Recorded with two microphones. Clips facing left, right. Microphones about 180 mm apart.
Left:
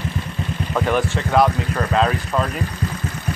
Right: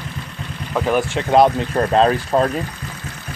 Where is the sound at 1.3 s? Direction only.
30° right (ahead or behind).